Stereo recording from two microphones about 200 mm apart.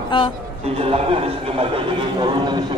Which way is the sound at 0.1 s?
25° left (ahead or behind).